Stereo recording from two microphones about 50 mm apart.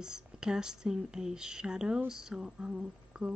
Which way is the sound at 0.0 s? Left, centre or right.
Centre.